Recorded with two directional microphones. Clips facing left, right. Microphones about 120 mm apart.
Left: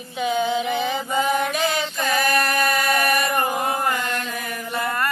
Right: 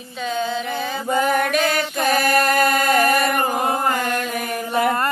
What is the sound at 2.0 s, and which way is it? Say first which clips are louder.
Chant: right 4 dB; 30° right (ahead or behind).